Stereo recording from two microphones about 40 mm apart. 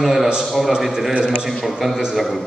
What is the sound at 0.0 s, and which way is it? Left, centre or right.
A man's voice, centre.